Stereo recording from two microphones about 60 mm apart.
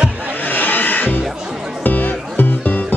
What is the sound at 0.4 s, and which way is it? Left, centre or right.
Music, left.